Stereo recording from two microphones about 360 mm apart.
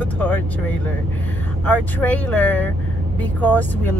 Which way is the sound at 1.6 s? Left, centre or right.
Centre.